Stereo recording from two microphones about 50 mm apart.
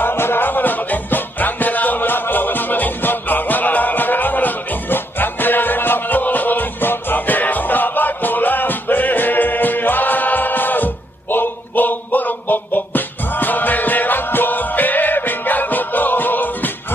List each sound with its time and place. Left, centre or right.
0.0 s music: left